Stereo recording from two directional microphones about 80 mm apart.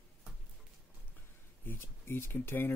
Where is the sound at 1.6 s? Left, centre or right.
Left.